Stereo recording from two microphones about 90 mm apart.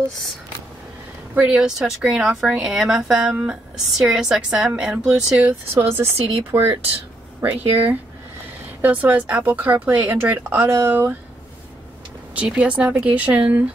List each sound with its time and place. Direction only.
1.3 s speech: 10° right (ahead or behind)
5.8 s speech: 25° right (ahead or behind)
12.4 s speech: 15° right (ahead or behind)